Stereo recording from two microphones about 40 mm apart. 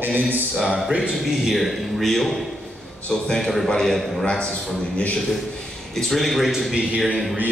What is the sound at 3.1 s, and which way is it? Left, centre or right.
A man's voice, centre.